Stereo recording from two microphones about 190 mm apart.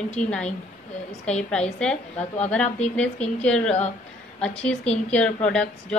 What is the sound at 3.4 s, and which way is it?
A woman's voice, 5° left (ahead or behind).